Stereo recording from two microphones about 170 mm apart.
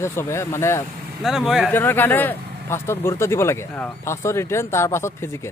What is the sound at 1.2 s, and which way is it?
Speech, centre (ahead or behind).